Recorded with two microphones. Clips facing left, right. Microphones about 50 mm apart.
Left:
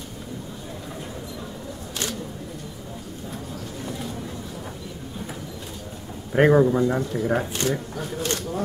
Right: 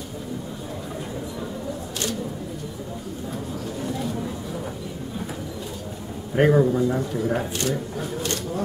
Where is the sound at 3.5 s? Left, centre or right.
Centre.